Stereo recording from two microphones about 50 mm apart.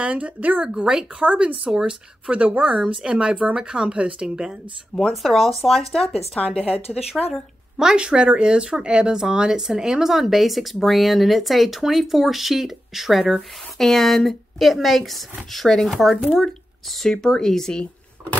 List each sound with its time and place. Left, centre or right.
0.0 s speech: right
1.7 s speech: centre
2.3 s speech: right
4.9 s speech: centre
6.9 s speech: centre